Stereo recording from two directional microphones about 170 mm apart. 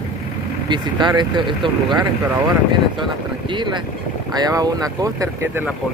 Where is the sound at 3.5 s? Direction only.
25° right (ahead or behind).